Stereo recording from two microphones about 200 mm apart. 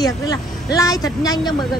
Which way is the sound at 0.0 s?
20° left (ahead or behind).